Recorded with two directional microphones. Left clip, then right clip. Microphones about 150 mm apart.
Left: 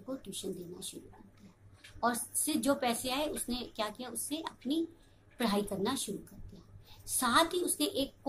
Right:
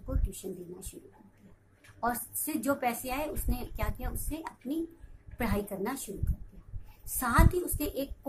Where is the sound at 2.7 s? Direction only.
10° right (ahead or behind).